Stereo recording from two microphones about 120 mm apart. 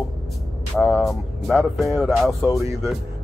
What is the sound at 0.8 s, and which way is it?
Speech, 15° left (ahead or behind).